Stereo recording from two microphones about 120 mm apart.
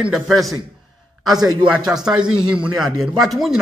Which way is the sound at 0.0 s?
Centre (ahead or behind).